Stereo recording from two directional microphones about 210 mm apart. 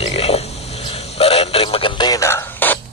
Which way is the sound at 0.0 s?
30° left (ahead or behind).